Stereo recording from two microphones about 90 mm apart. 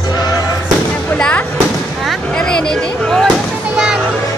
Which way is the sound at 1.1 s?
15° left (ahead or behind).